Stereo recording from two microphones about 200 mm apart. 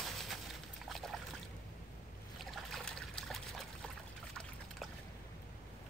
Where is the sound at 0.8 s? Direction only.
Centre (ahead or behind).